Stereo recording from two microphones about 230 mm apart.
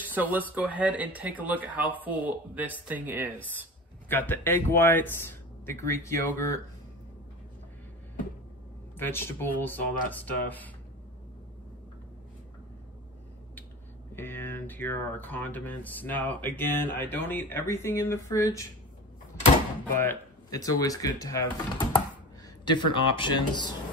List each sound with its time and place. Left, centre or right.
0.1 s speech: centre
4.1 s speech: centre
8.9 s speech: centre
14.1 s speech: centre
20.0 s speech: centre